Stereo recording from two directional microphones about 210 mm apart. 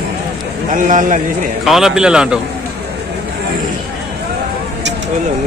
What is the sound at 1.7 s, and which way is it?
Speech, centre (ahead or behind).